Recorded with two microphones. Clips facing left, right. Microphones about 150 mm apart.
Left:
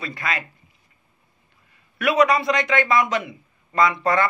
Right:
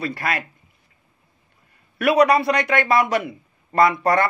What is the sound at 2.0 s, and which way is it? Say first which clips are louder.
A man's voice: right 3 dB; 60° right (ahead or behind).